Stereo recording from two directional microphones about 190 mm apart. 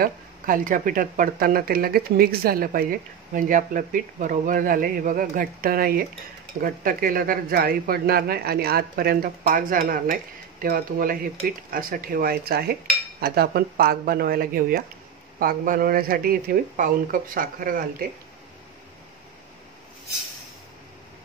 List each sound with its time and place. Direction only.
0.0 s speech: 45° right (ahead or behind)